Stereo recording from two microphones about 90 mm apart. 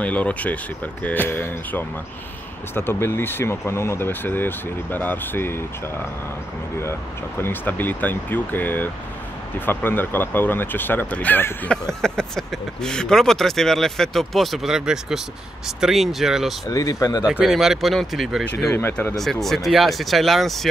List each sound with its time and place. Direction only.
0.0 s speech: 15° left (ahead or behind)
6.8 s speech: 25° left (ahead or behind)
12.0 s speech: 5° left (ahead or behind)
16.6 s speech: 40° left (ahead or behind)
17.3 s speech: 5° right (ahead or behind)
18.7 s speech: 25° left (ahead or behind)
19.1 s speech: 5° left (ahead or behind)